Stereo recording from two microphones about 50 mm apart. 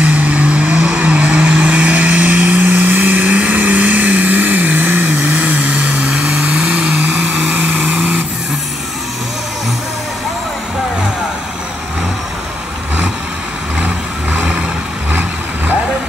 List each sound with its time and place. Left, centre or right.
0.0 s vehicle: right
6.4 s vehicle: centre
13.8 s vehicle: right